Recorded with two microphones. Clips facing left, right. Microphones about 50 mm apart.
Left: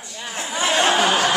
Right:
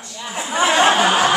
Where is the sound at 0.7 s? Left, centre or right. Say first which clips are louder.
Right 2 dB; right.